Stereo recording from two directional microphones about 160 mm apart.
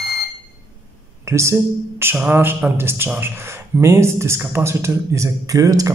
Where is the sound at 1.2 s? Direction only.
20° right (ahead or behind).